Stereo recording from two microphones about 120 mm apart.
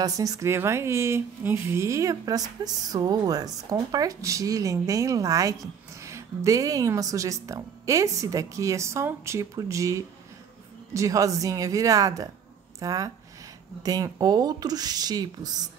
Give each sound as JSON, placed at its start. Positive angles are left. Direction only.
{"t": 0.0, "sound": "speech", "side_deg": -30}